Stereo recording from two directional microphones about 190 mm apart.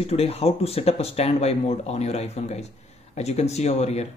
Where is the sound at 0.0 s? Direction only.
30° left (ahead or behind).